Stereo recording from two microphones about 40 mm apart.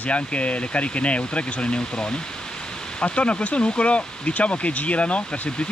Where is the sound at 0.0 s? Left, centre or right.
Left.